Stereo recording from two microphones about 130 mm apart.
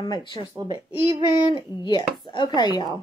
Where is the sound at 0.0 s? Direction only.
35° left (ahead or behind).